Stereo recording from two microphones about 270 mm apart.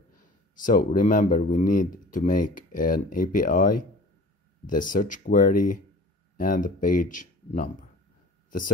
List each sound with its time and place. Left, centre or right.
0.6 s speech: left